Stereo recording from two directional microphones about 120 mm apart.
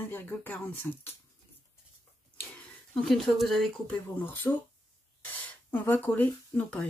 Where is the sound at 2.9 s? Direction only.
Centre (ahead or behind).